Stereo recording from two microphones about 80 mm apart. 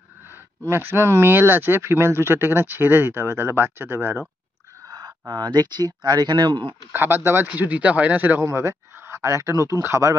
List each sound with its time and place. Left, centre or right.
0.3 s speech: right
4.8 s a sound: right
5.3 s speech: right
6.7 s speech: right
8.5 s speech: right